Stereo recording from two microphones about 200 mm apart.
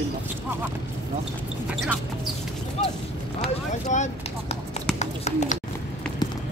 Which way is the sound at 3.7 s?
35° left (ahead or behind).